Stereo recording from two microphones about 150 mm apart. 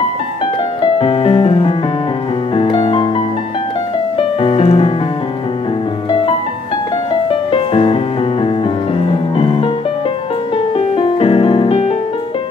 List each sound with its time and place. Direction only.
0.9 s music: 40° left (ahead or behind)
4.4 s music: 40° left (ahead or behind)
7.2 s music: 35° left (ahead or behind)
11.0 s piano: 40° left (ahead or behind)